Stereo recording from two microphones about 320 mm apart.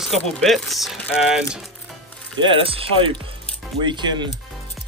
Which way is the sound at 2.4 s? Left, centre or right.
Centre.